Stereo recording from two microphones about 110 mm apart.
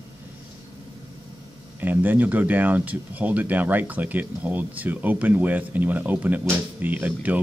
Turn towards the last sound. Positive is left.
turn(degrees=-15)  # may be behind; listen again after turning